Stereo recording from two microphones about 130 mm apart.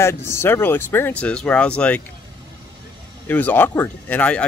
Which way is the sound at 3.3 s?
15° left (ahead or behind).